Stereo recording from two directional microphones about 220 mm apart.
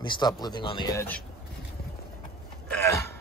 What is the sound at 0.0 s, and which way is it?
Speech, 20° left (ahead or behind).